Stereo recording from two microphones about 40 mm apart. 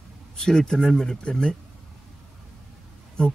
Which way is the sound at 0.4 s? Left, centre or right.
Centre.